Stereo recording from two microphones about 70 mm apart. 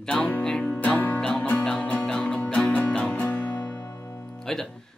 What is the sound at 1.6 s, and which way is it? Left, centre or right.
Music, centre.